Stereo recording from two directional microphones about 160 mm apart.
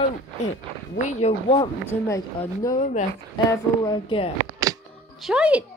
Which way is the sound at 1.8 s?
15° left (ahead or behind).